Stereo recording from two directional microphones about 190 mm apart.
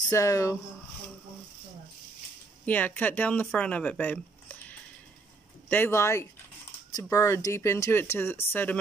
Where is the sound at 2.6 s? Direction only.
10° left (ahead or behind).